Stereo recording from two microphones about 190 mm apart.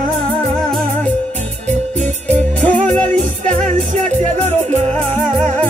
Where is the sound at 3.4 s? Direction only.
40° right (ahead or behind).